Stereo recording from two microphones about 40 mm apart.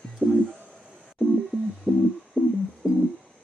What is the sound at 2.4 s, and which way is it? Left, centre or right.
Music, left.